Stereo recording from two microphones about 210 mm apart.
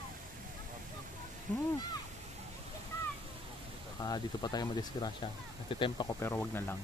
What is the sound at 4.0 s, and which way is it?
Speech, 20° left (ahead or behind).